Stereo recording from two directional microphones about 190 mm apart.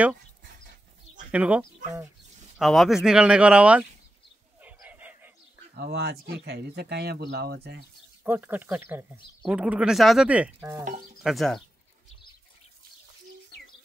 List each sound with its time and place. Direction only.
1.3 s speech: 5° right (ahead or behind)
4.6 s a sound: 10° right (ahead or behind)
5.8 s speech: 60° right (ahead or behind)
8.2 s speech: 10° right (ahead or behind)
11.2 s speech: centre (ahead or behind)